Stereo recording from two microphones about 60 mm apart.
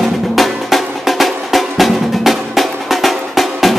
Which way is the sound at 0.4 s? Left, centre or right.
Centre.